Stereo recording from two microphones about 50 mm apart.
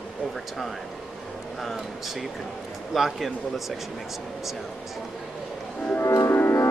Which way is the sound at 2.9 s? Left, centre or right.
Centre.